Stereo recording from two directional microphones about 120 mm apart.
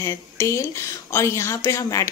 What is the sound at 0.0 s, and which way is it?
Speech, 25° left (ahead or behind).